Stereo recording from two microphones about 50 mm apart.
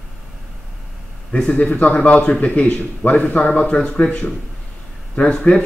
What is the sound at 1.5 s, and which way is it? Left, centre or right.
Speech, left.